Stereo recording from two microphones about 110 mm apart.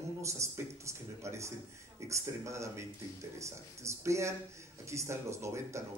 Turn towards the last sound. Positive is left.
turn(degrees=-25)  # may be behind; listen again after turning